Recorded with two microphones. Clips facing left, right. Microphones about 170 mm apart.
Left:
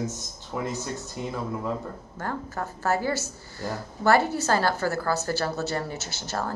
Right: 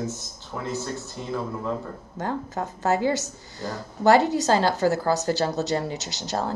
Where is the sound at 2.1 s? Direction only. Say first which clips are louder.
Right 4 dB; 20° right (ahead or behind).